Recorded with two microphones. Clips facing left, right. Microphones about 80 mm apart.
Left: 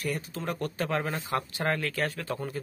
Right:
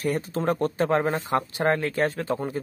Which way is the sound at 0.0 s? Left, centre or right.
Right.